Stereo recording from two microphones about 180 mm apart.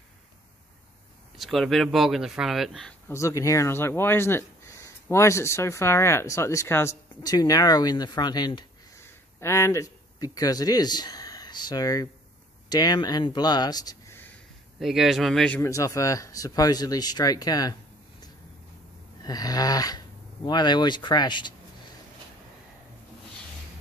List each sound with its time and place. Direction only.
1.4 s speech: centre (ahead or behind)
3.1 s speech: 15° left (ahead or behind)
14.8 s speech: centre (ahead or behind)
15.6 s speech: 15° left (ahead or behind)
19.2 s speech: 20° left (ahead or behind)